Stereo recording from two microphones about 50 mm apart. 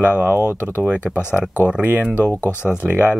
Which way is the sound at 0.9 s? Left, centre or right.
Right.